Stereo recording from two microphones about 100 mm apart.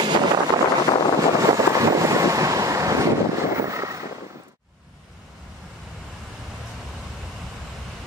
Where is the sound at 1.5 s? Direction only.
35° right (ahead or behind).